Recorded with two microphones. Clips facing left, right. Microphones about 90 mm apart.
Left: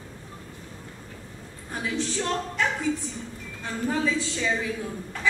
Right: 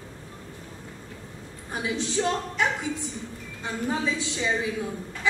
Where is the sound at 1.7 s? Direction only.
15° right (ahead or behind).